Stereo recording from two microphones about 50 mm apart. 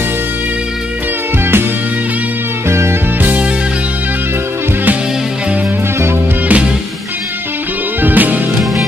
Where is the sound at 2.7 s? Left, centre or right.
Right.